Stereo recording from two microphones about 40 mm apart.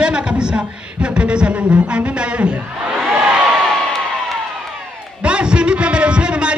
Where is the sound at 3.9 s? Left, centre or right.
Centre.